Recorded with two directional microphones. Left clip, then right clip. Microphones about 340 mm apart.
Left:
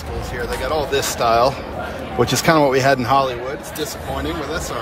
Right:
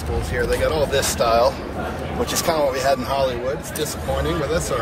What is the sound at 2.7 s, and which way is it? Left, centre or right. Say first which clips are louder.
Speech: left 5 dB; centre.